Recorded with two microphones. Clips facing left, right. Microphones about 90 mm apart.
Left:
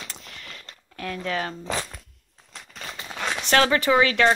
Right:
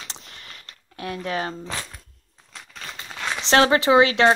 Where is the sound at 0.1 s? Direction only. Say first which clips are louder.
Left 1 dB; 25° right (ahead or behind).